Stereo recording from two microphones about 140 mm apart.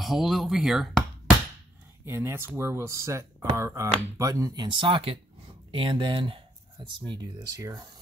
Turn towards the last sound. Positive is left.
turn(degrees=-25)  # may be behind; listen again after turning